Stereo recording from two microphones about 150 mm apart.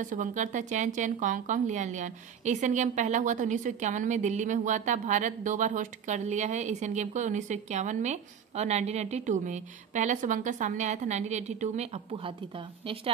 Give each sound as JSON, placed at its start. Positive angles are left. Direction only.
{"t": 0.0, "sound": "speech", "side_deg": -55}